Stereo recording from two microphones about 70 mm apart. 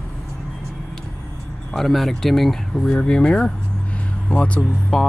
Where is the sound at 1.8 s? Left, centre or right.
Centre.